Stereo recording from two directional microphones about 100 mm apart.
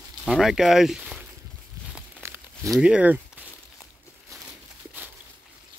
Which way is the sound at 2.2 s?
25° right (ahead or behind).